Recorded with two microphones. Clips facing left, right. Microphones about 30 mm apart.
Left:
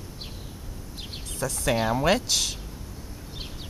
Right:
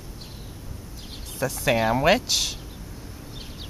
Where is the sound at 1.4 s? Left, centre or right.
Centre.